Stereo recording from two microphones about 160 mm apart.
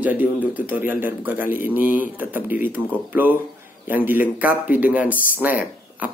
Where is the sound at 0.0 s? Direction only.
10° right (ahead or behind).